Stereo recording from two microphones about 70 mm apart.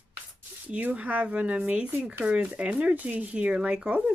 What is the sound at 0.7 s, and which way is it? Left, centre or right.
Speech, right.